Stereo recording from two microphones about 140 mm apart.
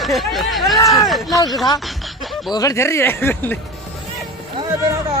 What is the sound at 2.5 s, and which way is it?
Speech, 25° left (ahead or behind).